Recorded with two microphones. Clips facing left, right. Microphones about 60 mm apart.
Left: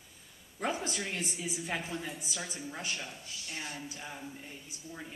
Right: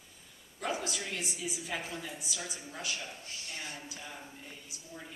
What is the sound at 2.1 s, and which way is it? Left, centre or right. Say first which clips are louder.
Speech: left 1 dB; left.